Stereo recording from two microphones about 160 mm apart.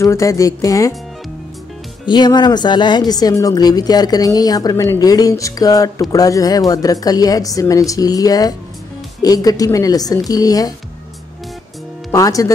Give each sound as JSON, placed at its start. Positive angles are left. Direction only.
{"t": 0.0, "sound": "speech", "side_deg": 20}
{"t": 2.0, "sound": "speech", "side_deg": 25}
{"t": 12.1, "sound": "speech", "side_deg": 20}